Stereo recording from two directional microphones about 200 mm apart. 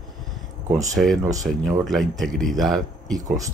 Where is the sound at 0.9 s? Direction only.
Centre (ahead or behind).